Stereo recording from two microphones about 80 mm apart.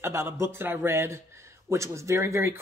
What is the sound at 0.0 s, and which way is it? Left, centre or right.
Speech, right.